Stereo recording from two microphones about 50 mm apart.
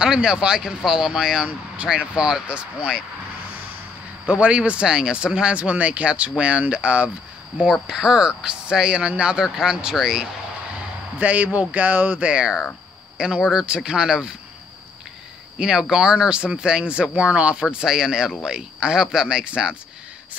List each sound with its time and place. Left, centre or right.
0.0 s speech: centre
4.3 s speech: right
7.8 s speech: centre
11.1 s speech: right
12.3 s speech: centre
13.4 s speech: centre
13.7 s speech: centre
15.5 s speech: centre